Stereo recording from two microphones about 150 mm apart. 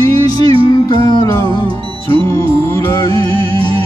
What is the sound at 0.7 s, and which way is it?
Music, 25° left (ahead or behind).